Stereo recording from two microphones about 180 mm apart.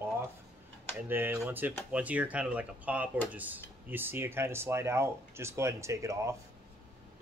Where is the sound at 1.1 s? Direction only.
10° right (ahead or behind).